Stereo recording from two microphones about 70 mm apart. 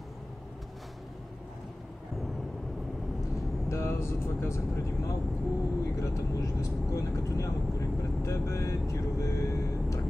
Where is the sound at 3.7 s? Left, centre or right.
Left.